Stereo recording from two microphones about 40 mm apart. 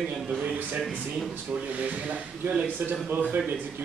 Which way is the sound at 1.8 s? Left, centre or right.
Right.